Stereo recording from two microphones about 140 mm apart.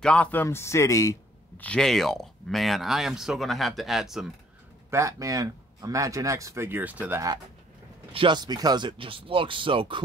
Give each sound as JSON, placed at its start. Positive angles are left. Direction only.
{"t": 0.0, "sound": "speech", "side_deg": 10}
{"t": 1.6, "sound": "speech", "side_deg": 5}
{"t": 4.9, "sound": "speech", "side_deg": -20}
{"t": 8.1, "sound": "speech", "side_deg": -35}